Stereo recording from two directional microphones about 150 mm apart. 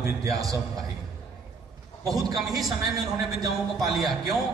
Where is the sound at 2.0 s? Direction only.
25° right (ahead or behind).